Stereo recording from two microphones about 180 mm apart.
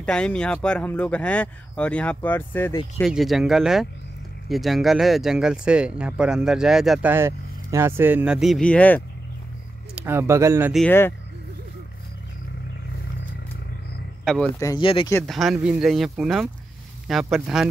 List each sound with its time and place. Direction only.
0.0 s speech: 5° left (ahead or behind)
3.0 s speech: centre (ahead or behind)
9.9 s speech: 15° right (ahead or behind)
10.9 s speech: 10° left (ahead or behind)
14.6 s speech: 25° left (ahead or behind)
15.2 s speech: centre (ahead or behind)